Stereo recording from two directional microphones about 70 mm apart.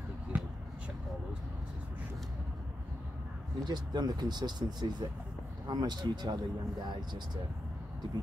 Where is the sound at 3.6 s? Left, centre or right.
Right.